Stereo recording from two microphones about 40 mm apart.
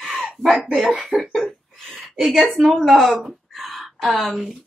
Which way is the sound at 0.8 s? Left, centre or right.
Right.